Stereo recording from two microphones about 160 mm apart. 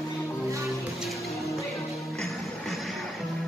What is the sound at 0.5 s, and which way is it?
Music, 20° right (ahead or behind).